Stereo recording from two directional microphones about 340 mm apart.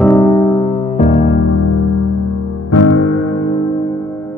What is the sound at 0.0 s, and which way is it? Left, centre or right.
Music, centre.